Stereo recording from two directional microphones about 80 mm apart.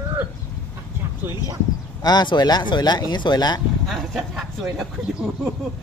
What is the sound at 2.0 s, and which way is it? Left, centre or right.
Speech, left.